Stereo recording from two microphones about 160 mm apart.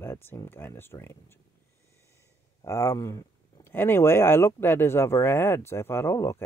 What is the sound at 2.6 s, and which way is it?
Speech, 20° left (ahead or behind).